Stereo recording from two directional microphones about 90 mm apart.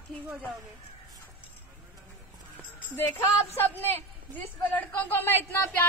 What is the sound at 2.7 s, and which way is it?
Speech, 20° left (ahead or behind).